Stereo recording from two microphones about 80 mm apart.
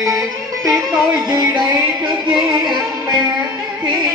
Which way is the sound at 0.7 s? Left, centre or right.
Right.